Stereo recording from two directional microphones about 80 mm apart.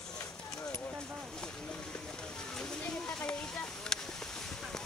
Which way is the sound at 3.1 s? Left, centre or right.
Centre.